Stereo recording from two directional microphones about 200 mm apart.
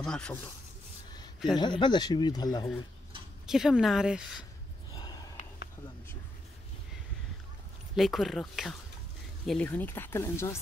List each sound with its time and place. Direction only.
0.0 s speech: 5° left (ahead or behind)
1.1 s a sound: 20° left (ahead or behind)
1.6 s speech: 25° left (ahead or behind)
3.4 s speech: centre (ahead or behind)
4.9 s a sound: 20° left (ahead or behind)
7.9 s speech: centre (ahead or behind)